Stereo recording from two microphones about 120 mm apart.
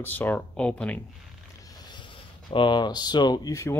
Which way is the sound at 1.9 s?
40° left (ahead or behind).